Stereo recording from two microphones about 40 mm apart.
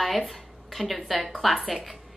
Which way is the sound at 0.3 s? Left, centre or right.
Centre.